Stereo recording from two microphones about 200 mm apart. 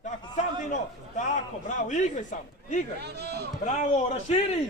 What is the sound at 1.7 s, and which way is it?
A man's voice, 35° left (ahead or behind).